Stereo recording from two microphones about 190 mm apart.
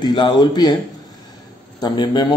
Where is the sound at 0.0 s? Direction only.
25° left (ahead or behind).